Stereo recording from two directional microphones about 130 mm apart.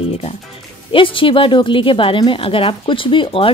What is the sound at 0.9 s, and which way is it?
A woman's voice, 40° left (ahead or behind).